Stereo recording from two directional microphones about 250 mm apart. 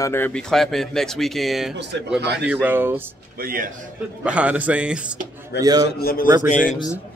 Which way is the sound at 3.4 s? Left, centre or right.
Right.